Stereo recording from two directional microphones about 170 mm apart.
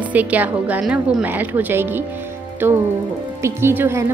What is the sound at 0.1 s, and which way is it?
A woman's voice, 10° right (ahead or behind).